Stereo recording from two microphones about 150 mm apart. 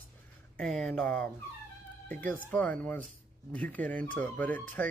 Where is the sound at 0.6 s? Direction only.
5° left (ahead or behind).